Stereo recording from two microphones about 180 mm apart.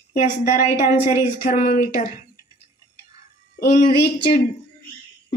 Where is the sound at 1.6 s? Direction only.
55° left (ahead or behind).